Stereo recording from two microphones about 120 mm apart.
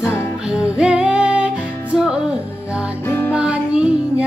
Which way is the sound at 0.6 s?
10° right (ahead or behind).